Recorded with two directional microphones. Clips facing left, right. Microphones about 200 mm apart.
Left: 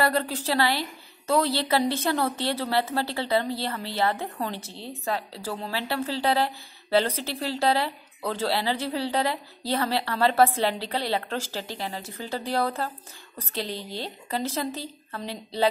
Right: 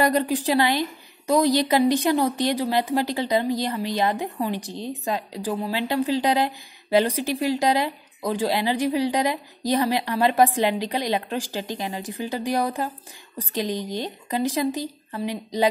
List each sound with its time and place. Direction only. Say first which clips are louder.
0.0 s a woman's voice: right 4 dB; 15° right (ahead or behind)